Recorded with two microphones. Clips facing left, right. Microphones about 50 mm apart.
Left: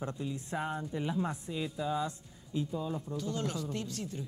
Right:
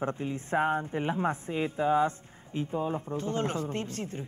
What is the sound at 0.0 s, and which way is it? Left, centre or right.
Speech, right.